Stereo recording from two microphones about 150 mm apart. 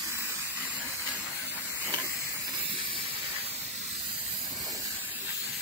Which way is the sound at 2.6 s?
35° right (ahead or behind).